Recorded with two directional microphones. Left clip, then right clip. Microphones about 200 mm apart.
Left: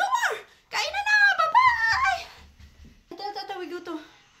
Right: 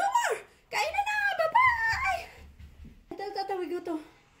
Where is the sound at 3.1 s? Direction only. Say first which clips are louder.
Even; 30° left (ahead or behind).